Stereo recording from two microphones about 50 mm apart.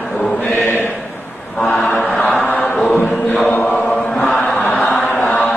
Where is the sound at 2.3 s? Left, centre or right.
Left.